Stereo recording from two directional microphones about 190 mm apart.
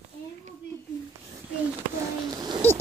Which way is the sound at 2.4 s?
20° right (ahead or behind).